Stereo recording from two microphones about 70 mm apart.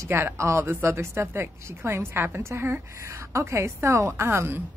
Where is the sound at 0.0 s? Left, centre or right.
Right.